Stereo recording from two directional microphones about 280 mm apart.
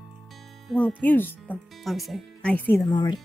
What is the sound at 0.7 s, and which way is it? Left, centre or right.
Speech, centre.